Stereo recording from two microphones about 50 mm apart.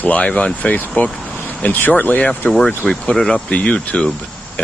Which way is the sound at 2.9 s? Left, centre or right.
Centre.